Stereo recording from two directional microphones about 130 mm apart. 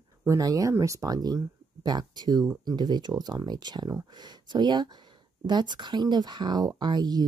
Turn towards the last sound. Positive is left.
turn(degrees=-35)  # may be behind; listen again after turning